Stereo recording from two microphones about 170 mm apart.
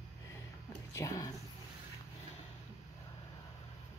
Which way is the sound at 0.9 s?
20° left (ahead or behind).